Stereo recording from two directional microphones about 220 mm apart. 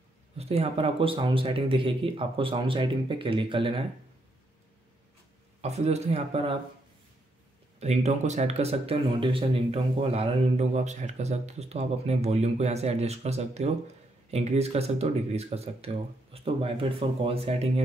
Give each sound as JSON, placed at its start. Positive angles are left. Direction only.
{"t": 0.4, "sound": "speech", "side_deg": -30}
{"t": 5.6, "sound": "speech", "side_deg": -30}
{"t": 7.8, "sound": "speech", "side_deg": -30}